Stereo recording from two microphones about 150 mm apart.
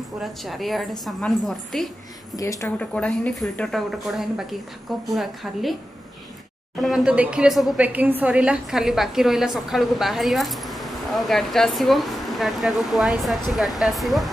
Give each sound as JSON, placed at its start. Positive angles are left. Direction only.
{"t": 0.2, "sound": "a woman's voice", "side_deg": 0}
{"t": 2.3, "sound": "speech", "side_deg": 20}
{"t": 2.8, "sound": "a woman's voice", "side_deg": 5}
{"t": 6.8, "sound": "a woman's voice", "side_deg": 0}